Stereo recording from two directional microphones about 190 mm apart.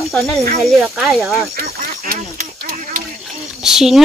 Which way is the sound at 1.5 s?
45° right (ahead or behind).